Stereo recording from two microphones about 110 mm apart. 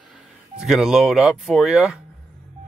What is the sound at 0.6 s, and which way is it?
Speech, 5° right (ahead or behind).